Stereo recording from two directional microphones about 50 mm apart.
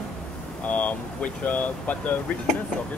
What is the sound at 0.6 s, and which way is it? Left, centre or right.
Speech, left.